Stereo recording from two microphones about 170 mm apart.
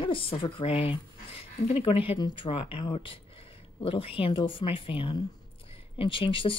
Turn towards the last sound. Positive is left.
turn(degrees=30)  # may be behind; listen again after turning